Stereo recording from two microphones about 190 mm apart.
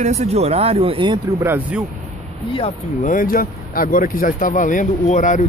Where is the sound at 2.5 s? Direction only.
30° left (ahead or behind).